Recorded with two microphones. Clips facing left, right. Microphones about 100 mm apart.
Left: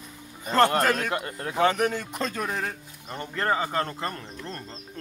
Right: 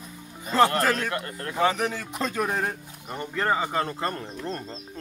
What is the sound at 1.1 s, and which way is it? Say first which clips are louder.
Speech: left 1 dB; 10° left (ahead or behind).